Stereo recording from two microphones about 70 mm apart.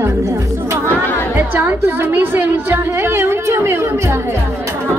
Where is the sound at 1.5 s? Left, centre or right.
Right.